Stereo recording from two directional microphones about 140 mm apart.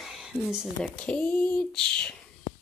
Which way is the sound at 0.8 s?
10° left (ahead or behind).